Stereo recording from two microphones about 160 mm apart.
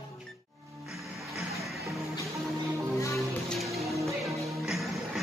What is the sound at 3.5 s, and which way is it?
Music, centre (ahead or behind).